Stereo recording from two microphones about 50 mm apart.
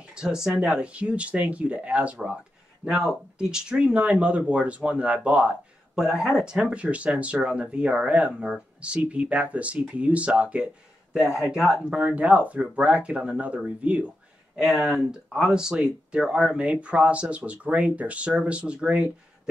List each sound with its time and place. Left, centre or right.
0.1 s speech: centre
3.3 s speech: centre
5.9 s speech: centre; by 10.7 s right
11.5 s speech: centre
12.0 s speech: right
14.6 s speech: centre
16.5 s speech: right